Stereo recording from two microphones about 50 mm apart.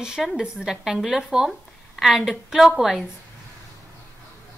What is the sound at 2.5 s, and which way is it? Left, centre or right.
Speech, centre.